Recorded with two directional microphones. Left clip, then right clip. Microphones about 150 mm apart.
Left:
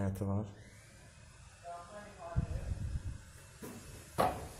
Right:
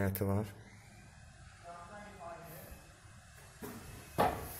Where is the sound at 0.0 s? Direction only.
10° right (ahead or behind).